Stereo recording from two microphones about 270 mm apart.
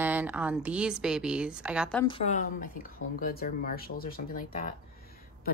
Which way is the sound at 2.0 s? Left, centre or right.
Left.